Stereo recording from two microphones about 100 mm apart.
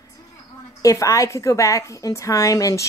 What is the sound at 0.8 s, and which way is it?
A woman's voice, 35° left (ahead or behind).